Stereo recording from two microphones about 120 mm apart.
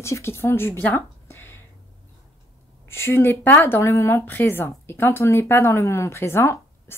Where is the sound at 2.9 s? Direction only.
20° left (ahead or behind).